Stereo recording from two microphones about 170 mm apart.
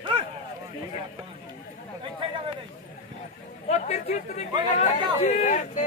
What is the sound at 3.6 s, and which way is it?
Speech, 40° left (ahead or behind).